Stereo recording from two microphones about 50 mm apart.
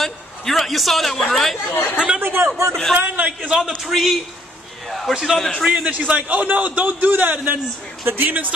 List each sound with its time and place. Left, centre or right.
0.0 s a man's voice: centre
1.7 s speech: left
2.1 s a man's voice: right
3.0 s a man's voice: right
3.4 s a man's voice: centre
5.9 s a man's voice: right